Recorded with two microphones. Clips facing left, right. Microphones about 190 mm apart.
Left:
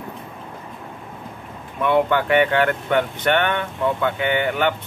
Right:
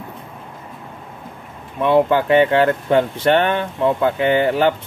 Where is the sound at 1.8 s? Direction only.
30° right (ahead or behind).